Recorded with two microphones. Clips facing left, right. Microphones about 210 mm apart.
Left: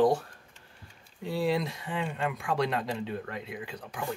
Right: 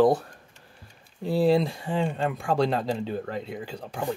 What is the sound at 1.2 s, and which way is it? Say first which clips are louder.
Speech: right 7 dB; 35° right (ahead or behind).